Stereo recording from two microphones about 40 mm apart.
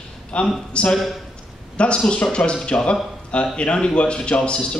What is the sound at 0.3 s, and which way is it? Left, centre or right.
Speech, left.